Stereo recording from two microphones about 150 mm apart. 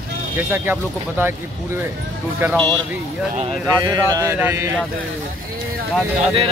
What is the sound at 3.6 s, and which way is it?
Speech, 25° right (ahead or behind).